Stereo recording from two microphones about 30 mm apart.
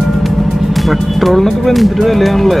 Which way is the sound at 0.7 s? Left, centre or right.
Centre.